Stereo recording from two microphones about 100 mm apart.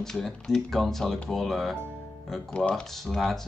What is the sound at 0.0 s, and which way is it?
Speech, 5° left (ahead or behind).